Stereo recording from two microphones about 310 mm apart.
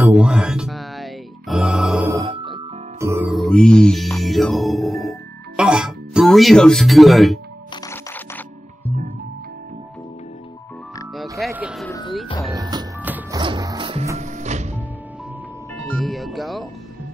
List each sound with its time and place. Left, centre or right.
0.2 s music: centre
5.6 s speech: centre
7.7 s music: centre
11.3 s vehicle: centre
11.9 s music: centre
12.5 s music: centre
15.9 s music: centre